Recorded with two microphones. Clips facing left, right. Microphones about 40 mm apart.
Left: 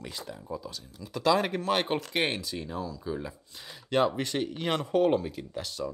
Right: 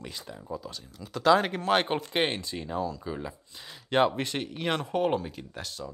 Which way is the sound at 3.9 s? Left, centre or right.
Right.